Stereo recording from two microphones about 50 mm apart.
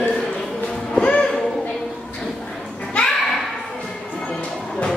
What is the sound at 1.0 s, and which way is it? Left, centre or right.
Music, left.